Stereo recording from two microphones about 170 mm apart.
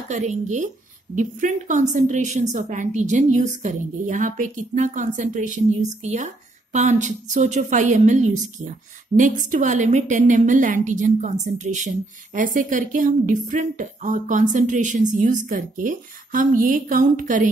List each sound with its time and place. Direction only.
0.1 s a woman's voice: 45° right (ahead or behind)